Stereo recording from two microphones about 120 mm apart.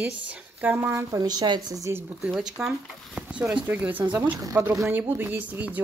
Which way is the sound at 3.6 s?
15° right (ahead or behind).